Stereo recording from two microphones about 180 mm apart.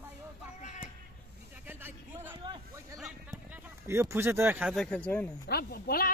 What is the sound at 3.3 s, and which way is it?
Speech, 15° right (ahead or behind).